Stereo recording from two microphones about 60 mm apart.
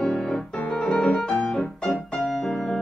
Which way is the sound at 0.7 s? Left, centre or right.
Centre.